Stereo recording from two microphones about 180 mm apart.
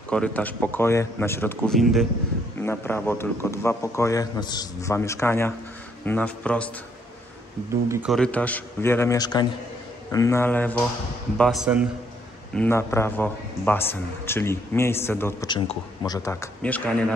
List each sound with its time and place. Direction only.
0.1 s a man's voice: 5° left (ahead or behind)
2.6 s a man's voice: 10° left (ahead or behind)
8.1 s a man's voice: 5° left (ahead or behind)
12.5 s a man's voice: 15° left (ahead or behind)
15.4 s a man's voice: 25° left (ahead or behind); by 16.9 s 10° left (ahead or behind)